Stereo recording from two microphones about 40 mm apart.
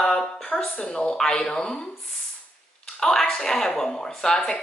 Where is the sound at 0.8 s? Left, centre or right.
Left.